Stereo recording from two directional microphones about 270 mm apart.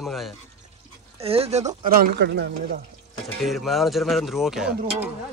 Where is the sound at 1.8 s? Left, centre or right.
Right.